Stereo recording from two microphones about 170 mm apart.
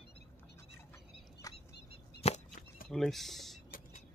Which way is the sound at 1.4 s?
20° left (ahead or behind).